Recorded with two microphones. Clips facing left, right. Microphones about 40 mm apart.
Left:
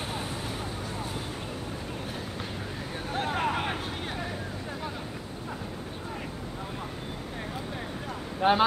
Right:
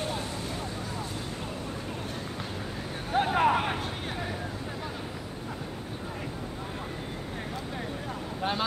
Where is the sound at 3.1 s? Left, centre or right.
Centre.